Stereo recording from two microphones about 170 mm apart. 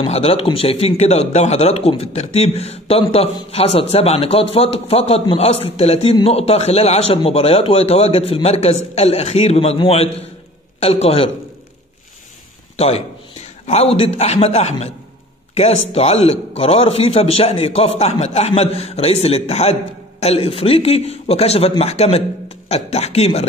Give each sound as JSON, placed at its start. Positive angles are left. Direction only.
{"t": 0.0, "sound": "a man's voice", "side_deg": 35}
{"t": 12.7, "sound": "a man's voice", "side_deg": 40}